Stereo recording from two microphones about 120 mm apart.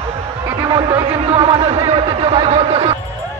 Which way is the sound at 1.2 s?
60° right (ahead or behind).